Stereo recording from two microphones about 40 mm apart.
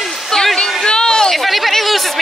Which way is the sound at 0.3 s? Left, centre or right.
Centre.